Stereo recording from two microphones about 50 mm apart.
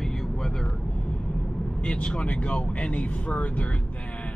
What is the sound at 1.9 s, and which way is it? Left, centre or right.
Speech, centre.